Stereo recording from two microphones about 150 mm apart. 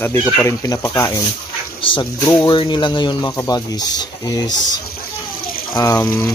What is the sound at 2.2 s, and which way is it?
Speech, 25° left (ahead or behind).